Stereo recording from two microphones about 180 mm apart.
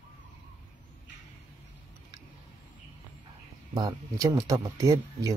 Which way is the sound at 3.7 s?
20° right (ahead or behind).